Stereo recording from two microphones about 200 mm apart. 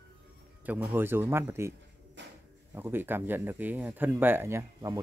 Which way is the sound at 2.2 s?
65° right (ahead or behind).